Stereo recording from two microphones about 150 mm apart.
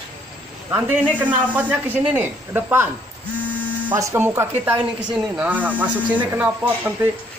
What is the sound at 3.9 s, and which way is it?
Speech, 15° right (ahead or behind).